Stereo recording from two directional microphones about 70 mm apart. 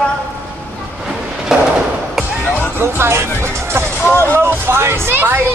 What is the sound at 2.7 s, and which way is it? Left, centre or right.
Speech, right.